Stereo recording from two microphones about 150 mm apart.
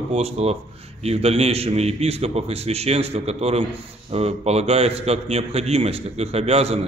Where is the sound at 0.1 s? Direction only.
45° right (ahead or behind).